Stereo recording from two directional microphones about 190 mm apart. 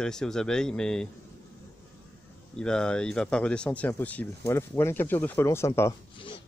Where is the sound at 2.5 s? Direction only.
5° left (ahead or behind).